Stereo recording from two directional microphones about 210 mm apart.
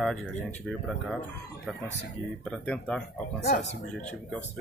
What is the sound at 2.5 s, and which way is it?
Speech, 5° left (ahead or behind).